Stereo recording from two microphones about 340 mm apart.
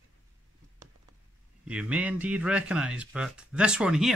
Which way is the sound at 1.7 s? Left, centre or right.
Centre.